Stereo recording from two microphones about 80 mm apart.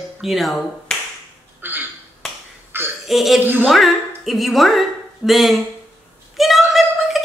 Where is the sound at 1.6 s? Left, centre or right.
Right.